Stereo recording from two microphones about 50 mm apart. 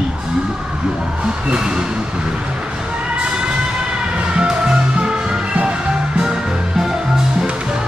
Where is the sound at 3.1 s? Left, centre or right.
Right.